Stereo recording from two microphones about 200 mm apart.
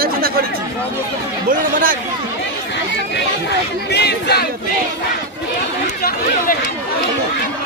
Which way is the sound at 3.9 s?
55° left (ahead or behind).